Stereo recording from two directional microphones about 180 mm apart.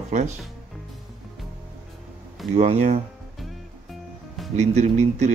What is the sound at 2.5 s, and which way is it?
Speech, 40° right (ahead or behind).